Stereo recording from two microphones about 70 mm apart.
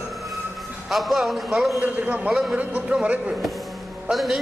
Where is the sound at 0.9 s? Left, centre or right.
Centre.